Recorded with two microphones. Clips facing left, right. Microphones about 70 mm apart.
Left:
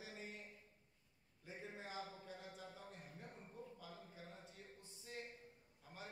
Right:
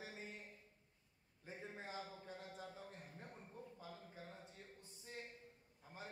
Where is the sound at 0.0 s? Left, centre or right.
Right.